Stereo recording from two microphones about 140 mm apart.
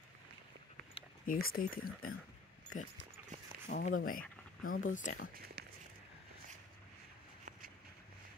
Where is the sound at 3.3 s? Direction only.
65° right (ahead or behind).